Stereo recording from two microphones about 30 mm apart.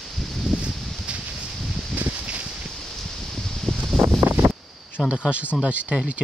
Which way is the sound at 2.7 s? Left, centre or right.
Centre.